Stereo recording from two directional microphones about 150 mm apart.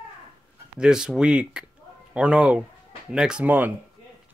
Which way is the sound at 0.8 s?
5° right (ahead or behind).